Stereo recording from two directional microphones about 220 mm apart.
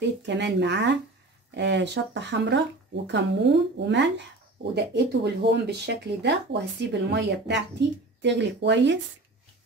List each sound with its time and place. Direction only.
0.0 s speech: 55° right (ahead or behind)